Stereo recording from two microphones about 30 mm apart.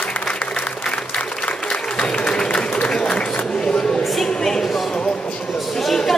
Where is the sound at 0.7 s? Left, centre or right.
Left.